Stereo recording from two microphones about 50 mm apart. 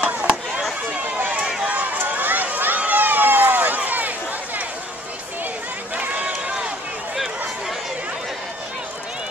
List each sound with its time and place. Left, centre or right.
0.0 s chop: right
0.9 s run: right
2.0 s run: right
2.8 s a sound: right
6.1 s run: centre